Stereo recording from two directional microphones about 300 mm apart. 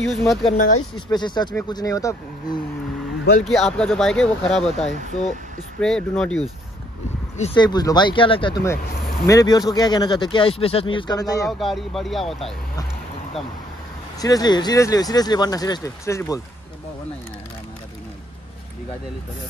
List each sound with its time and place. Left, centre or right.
0.0 s speech: centre
0.5 s speech: left
0.9 s speech: centre
3.4 s speech: centre
7.3 s speech: centre
11.4 s speech: centre
14.2 s speech: centre